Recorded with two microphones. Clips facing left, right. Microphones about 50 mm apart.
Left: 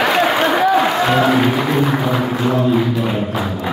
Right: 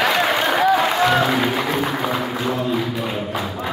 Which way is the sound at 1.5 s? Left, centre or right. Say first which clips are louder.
Left 5 dB; centre.